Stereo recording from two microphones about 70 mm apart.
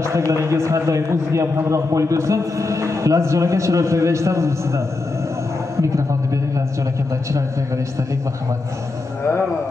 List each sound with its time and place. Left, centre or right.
0.3 s a man's voice: right